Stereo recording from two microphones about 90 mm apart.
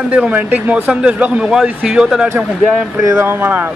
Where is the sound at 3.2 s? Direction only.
25° right (ahead or behind).